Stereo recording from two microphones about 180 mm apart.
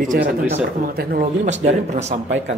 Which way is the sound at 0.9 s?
50° right (ahead or behind).